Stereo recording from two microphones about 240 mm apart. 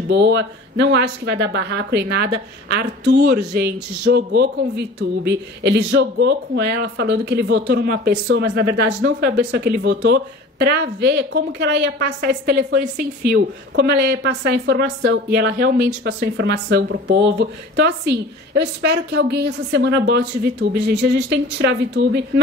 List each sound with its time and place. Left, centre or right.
0.1 s speech: right
13.7 s speech: right